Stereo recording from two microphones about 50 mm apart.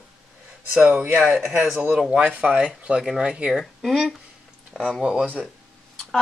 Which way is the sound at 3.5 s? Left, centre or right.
Centre.